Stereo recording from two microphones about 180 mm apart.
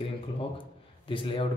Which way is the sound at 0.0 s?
30° left (ahead or behind).